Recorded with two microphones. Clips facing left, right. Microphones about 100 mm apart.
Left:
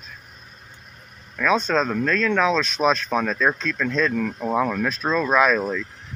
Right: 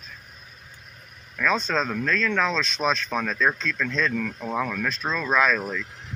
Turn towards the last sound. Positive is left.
turn(degrees=10)  # may be behind; listen again after turning